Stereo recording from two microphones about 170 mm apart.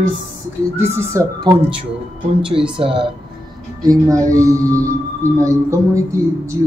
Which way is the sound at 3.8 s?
20° right (ahead or behind).